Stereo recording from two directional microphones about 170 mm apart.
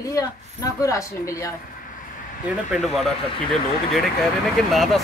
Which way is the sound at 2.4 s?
Centre (ahead or behind).